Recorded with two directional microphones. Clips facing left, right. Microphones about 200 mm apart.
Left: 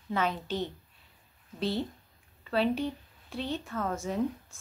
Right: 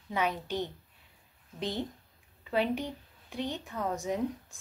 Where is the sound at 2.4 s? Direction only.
15° right (ahead or behind).